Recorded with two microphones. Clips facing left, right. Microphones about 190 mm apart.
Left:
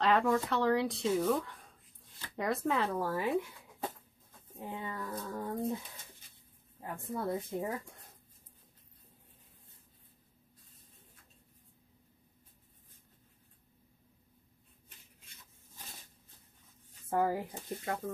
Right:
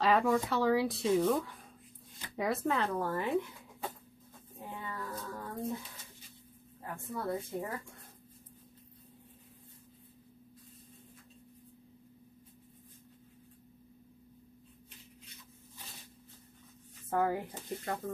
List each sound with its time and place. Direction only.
0.0 s speech: 5° right (ahead or behind)
4.6 s speech: 20° left (ahead or behind)
6.8 s speech: 20° left (ahead or behind)
17.2 s speech: 5° left (ahead or behind)